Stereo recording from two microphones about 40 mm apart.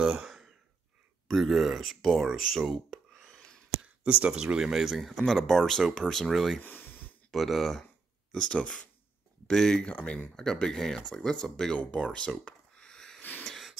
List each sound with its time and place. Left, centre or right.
0.0 s speech: centre
1.2 s speech: centre
3.3 s a sound: centre
3.8 s speech: right
4.7 s speech: centre
5.2 s speech: centre
6.6 s snort: left
7.2 s speech: centre
8.3 s speech: left
9.9 s speech: left
10.3 s speech: centre
11.7 s a sound: left
13.5 s a sound: centre